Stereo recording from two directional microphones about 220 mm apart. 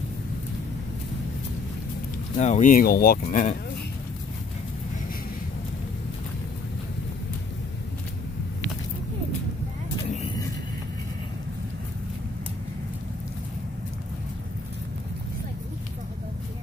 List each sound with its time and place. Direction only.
2.3 s speech: 35° left (ahead or behind)